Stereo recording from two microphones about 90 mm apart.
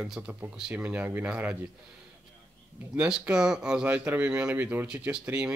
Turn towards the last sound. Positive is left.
turn(degrees=-10)  # may be behind; listen again after turning